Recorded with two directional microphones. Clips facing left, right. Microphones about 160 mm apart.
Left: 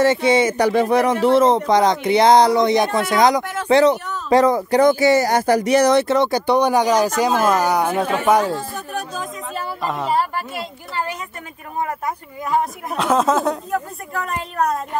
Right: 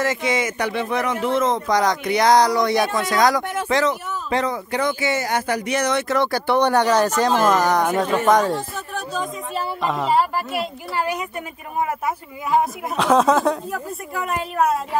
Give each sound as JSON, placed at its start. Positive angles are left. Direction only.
{"t": 0.0, "sound": "speech", "side_deg": 30}
{"t": 3.6, "sound": "speech", "side_deg": 30}
{"t": 6.1, "sound": "a woman's voice", "side_deg": 20}
{"t": 10.1, "sound": "a woman's voice", "side_deg": -10}
{"t": 12.4, "sound": "a woman's voice", "side_deg": 0}